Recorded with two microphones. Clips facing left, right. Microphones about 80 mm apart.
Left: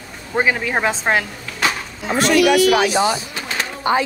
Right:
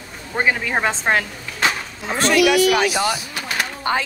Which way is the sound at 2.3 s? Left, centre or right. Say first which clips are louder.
Left 2 dB; left.